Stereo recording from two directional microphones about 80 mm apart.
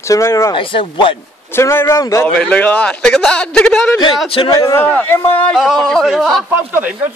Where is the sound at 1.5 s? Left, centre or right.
Left.